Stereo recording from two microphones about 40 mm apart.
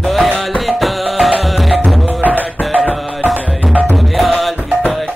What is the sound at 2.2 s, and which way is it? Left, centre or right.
Music, right.